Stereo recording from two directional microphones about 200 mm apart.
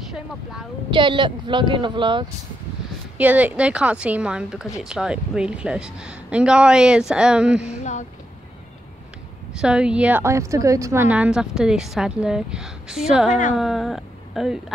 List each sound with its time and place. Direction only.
0.1 s a woman's voice: 5° right (ahead or behind)
0.8 s speech: 25° right (ahead or behind)
3.2 s a woman's voice: 10° right (ahead or behind)
7.8 s a sound: 35° left (ahead or behind)
9.5 s a woman's voice: 5° right (ahead or behind)
13.3 s a woman's voice: 40° left (ahead or behind)
13.6 s speech: centre (ahead or behind)